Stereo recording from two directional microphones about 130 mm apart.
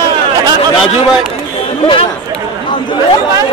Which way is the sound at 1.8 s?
40° left (ahead or behind).